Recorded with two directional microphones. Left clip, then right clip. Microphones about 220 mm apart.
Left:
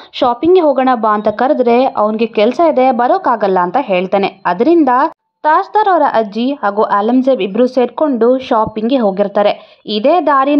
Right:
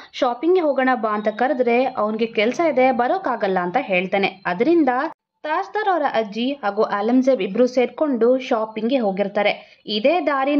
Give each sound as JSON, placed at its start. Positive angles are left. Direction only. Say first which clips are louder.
{"t": 0.2, "sound": "a woman's voice", "louder": "left 8 dB", "side_deg": 25}